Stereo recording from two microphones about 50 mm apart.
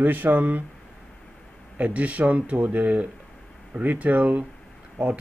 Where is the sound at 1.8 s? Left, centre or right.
Right.